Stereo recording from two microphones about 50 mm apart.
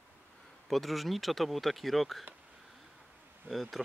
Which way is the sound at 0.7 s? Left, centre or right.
Centre.